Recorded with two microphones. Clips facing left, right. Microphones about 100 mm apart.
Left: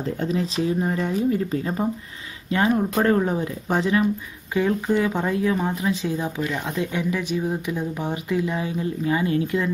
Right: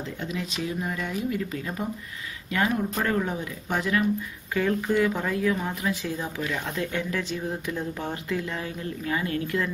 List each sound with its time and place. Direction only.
0.0 s speech: 40° left (ahead or behind); by 9.7 s 20° left (ahead or behind)